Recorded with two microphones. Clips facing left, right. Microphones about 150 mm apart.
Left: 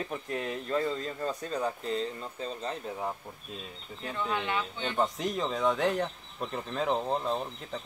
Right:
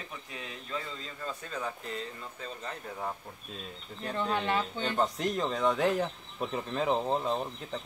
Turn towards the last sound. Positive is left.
turn(degrees=0)  # may be behind; listen again after turning